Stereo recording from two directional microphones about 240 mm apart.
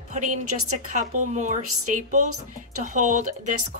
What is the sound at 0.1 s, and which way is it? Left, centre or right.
Speech, right.